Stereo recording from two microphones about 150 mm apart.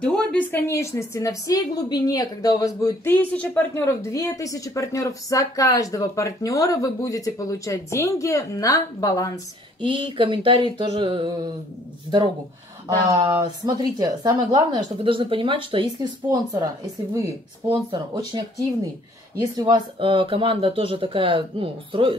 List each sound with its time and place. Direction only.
0.0 s a woman's voice: 5° left (ahead or behind); by 9.4 s 25° left (ahead or behind)
9.8 s speech: 35° right (ahead or behind)
12.8 s a woman's voice: 30° right (ahead or behind)
17.6 s a woman's voice: 30° right (ahead or behind)
19.4 s speech: 25° right (ahead or behind)